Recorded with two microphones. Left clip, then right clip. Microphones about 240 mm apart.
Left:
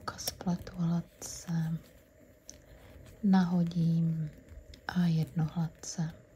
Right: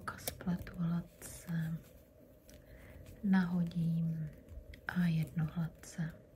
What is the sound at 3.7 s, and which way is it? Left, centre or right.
Speech, centre.